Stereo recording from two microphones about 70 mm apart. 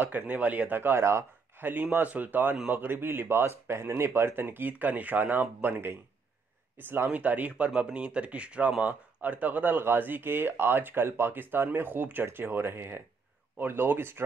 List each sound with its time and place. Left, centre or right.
0.1 s speech: right
1.6 s speech: right